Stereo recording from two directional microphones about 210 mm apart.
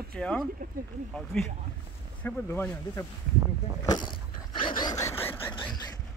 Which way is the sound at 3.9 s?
25° left (ahead or behind).